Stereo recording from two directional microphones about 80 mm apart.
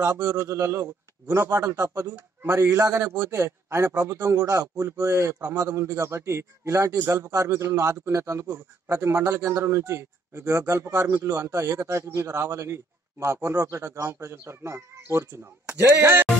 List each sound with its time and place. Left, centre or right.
0.0 s a man's voice: right